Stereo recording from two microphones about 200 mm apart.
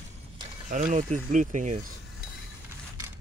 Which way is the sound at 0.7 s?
40° right (ahead or behind).